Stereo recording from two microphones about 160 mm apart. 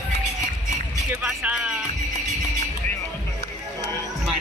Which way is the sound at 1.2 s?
5° right (ahead or behind).